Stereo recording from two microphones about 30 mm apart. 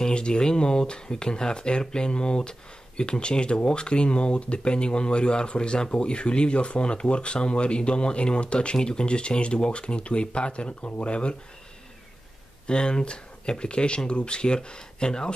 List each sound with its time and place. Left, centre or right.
0.1 s speech: left
12.6 s speech: left